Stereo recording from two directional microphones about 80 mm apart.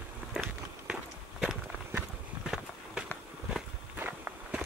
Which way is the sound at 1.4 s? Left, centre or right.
Centre.